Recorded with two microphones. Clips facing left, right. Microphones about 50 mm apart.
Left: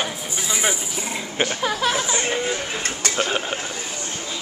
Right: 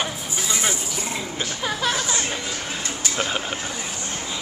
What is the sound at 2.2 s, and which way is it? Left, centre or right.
Speech, left.